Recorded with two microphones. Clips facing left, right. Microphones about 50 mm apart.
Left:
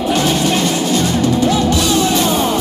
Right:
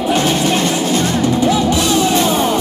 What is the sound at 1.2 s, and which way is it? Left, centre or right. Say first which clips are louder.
Music: right 1 dB; centre.